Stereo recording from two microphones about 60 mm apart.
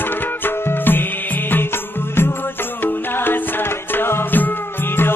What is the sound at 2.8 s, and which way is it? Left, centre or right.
Music, left.